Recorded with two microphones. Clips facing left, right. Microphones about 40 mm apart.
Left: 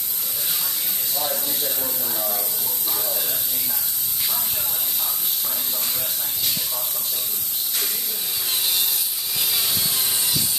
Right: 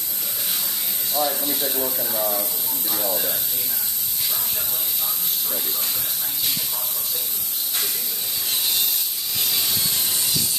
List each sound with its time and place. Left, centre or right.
1.2 s speech: right
8.5 s a sound: centre
9.4 s wood: centre